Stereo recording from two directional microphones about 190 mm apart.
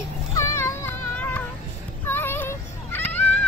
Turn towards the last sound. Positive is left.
turn(degrees=10)  # may be behind; listen again after turning